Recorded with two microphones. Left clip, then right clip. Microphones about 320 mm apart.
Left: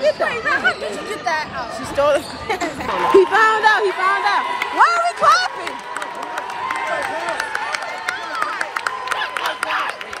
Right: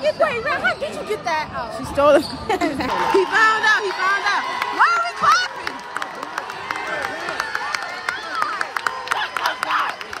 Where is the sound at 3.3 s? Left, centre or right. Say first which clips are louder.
Left 2 dB; centre.